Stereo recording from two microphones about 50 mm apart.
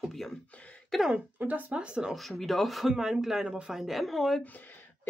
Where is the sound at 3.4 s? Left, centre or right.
Centre.